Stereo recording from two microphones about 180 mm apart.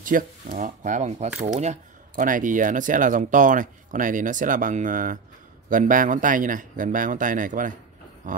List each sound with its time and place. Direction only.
0.0 s speech: 50° right (ahead or behind)